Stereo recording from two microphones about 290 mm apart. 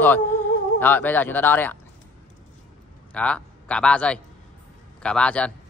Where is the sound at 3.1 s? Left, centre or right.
Centre.